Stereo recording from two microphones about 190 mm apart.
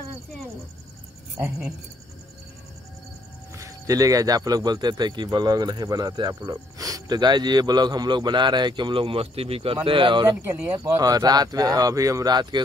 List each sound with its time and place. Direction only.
3.5 s speech: 15° right (ahead or behind)
10.4 s speech: 15° right (ahead or behind)